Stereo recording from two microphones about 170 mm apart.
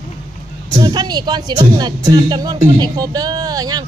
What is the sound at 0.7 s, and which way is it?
Speech, 25° right (ahead or behind).